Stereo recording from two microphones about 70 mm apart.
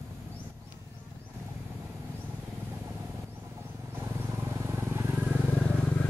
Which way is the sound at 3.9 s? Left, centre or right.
Right.